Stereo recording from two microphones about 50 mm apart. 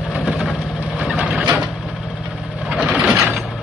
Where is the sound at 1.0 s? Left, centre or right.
Centre.